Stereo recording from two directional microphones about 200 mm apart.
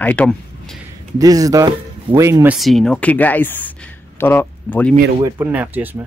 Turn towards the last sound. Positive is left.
turn(degrees=-10)  # may be behind; listen again after turning